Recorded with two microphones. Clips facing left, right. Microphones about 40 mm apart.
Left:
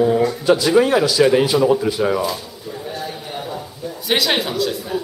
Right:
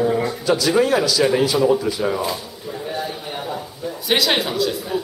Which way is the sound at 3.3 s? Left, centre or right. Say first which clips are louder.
Even; centre.